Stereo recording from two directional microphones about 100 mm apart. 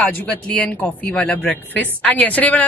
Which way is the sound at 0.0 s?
15° left (ahead or behind).